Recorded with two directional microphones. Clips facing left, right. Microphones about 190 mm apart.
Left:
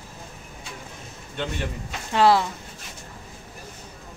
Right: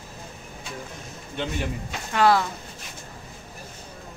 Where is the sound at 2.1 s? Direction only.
25° left (ahead or behind).